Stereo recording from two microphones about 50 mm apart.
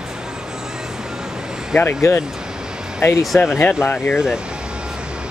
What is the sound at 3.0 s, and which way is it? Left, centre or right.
Speech, left.